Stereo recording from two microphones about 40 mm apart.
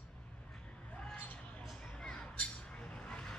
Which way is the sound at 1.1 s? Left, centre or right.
Left.